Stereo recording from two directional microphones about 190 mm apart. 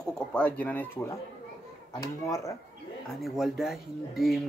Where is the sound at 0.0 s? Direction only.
5° left (ahead or behind).